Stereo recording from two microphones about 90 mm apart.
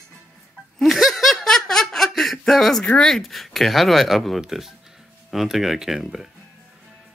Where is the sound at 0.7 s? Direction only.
Centre (ahead or behind).